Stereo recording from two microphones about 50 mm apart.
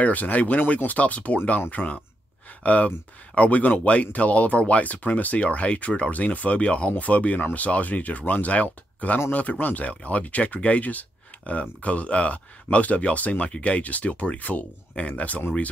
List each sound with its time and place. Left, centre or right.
0.0 s speech: left